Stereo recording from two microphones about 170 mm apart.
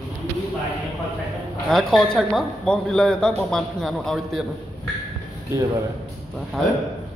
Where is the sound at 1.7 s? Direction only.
Centre (ahead or behind).